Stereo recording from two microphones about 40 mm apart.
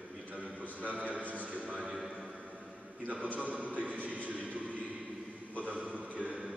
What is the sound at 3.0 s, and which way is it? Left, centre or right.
A man's voice, right.